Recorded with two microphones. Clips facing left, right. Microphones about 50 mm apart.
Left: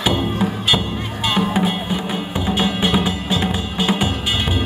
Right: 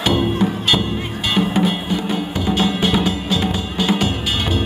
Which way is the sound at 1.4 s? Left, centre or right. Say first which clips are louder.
Right 2 dB; centre.